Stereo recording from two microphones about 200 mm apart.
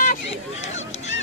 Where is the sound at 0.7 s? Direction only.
35° left (ahead or behind).